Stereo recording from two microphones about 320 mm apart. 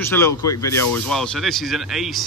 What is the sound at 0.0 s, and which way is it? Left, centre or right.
Speech, centre.